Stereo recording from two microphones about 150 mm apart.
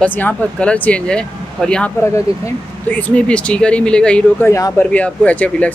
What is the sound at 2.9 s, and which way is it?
Speech, 10° left (ahead or behind).